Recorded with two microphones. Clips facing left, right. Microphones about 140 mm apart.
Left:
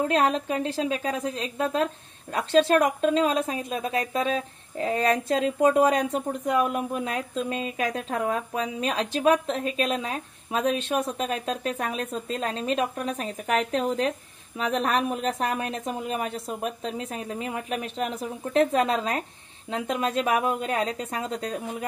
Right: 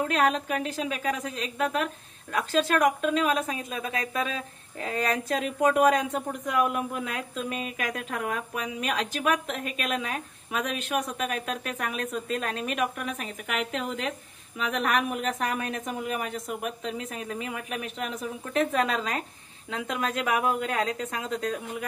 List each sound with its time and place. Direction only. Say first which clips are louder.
0.1 s speech: left 2 dB; 25° left (ahead or behind)